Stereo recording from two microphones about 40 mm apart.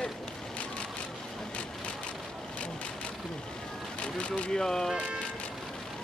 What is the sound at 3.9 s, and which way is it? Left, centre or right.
Vehicle, left.